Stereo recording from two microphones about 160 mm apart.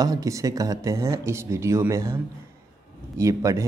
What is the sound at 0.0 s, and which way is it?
A man's voice, 20° right (ahead or behind).